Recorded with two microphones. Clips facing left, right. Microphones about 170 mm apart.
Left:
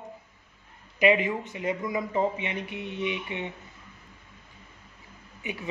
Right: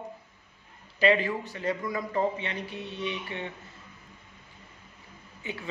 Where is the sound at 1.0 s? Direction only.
15° left (ahead or behind).